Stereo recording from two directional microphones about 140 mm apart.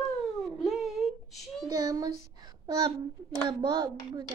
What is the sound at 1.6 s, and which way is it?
Child singing, 25° right (ahead or behind).